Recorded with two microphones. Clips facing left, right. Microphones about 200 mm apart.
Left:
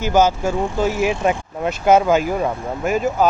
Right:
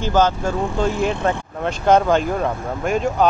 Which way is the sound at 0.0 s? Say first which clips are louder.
Left 2 dB; 10° left (ahead or behind).